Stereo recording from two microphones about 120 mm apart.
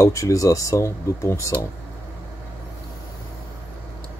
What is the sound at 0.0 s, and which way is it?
Speech, 25° left (ahead or behind).